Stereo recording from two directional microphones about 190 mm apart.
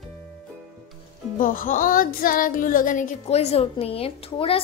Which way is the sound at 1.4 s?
45° left (ahead or behind).